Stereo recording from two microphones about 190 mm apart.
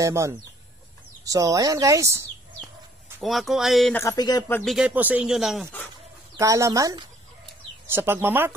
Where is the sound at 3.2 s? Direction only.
Centre (ahead or behind).